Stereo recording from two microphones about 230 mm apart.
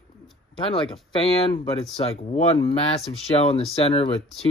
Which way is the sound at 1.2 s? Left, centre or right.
Left.